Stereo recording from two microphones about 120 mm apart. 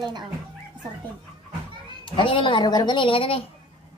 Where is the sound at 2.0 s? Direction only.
45° left (ahead or behind).